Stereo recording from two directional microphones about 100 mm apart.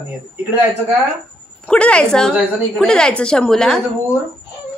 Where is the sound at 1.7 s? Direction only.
10° left (ahead or behind).